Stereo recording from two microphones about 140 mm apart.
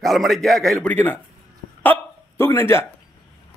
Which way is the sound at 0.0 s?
Centre (ahead or behind).